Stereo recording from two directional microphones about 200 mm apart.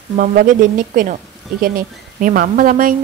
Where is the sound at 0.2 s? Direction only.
45° right (ahead or behind).